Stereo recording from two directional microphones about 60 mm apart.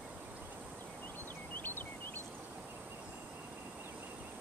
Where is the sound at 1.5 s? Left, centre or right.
Left.